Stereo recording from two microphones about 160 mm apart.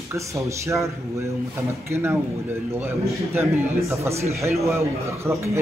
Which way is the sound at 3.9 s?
15° right (ahead or behind).